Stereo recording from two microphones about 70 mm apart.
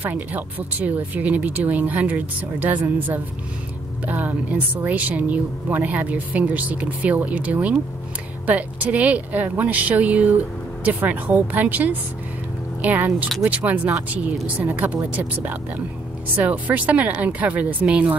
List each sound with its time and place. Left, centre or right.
0.0 s a woman's voice: right